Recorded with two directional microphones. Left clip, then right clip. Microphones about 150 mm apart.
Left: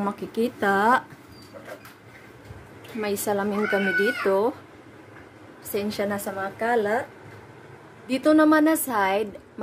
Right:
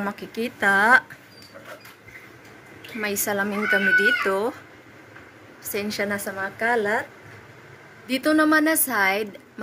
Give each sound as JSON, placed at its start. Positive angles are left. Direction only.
{"t": 0.0, "sound": "speech", "side_deg": 15}
{"t": 3.0, "sound": "speech", "side_deg": 15}
{"t": 5.7, "sound": "speech", "side_deg": 10}
{"t": 8.1, "sound": "speech", "side_deg": 15}